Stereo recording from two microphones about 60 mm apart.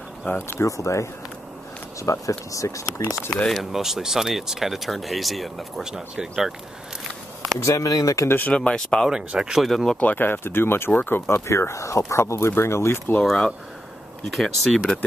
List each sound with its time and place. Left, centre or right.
0.2 s speech: left
0.6 s speech: left
3.0 s speech: left
3.4 s speech: centre
7.6 s speech: left
8.5 s speech: centre
9.1 s speech: centre
9.7 s speech: centre
9.9 s speech: left
11.4 s speech: left
13.2 s speech: centre